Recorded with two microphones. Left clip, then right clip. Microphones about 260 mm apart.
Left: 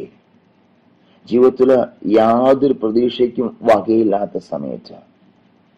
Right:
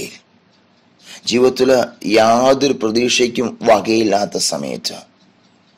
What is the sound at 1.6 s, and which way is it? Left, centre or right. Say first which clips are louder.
Speech: even; right.